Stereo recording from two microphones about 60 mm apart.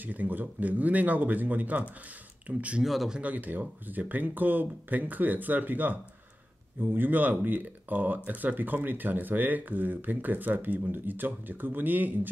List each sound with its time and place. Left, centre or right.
0.0 s speech: right
2.8 s speech: centre
3.2 s speech: right